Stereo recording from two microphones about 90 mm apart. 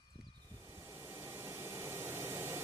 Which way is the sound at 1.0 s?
30° right (ahead or behind).